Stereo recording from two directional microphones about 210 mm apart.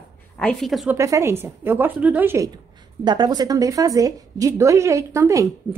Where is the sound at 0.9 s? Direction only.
15° right (ahead or behind).